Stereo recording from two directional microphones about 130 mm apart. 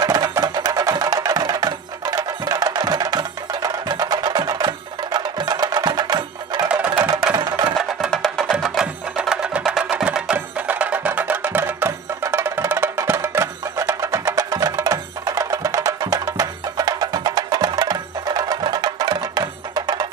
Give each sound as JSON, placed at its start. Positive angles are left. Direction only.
{"t": 0.0, "sound": "music", "side_deg": -30}
{"t": 6.7, "sound": "music", "side_deg": -15}
{"t": 7.3, "sound": "music", "side_deg": -30}
{"t": 7.7, "sound": "music", "side_deg": 0}